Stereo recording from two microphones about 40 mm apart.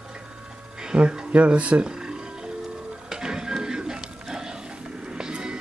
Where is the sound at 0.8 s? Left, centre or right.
Right.